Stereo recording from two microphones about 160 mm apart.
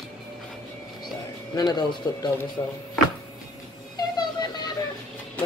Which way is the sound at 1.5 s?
25° left (ahead or behind).